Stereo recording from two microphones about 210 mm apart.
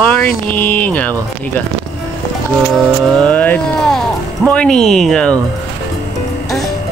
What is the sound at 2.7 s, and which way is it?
Speech, 5° left (ahead or behind).